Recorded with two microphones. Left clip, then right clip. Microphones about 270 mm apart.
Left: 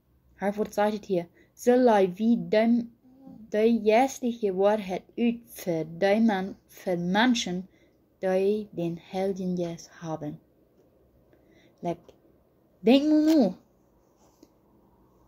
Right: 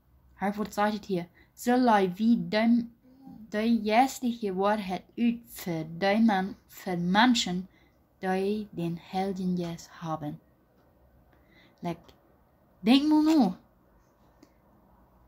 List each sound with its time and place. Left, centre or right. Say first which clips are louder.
0.4 s speech: left 3 dB; centre
11.5 s a sound: left 4 dB; centre
12.8 s speech: left 2 dB; centre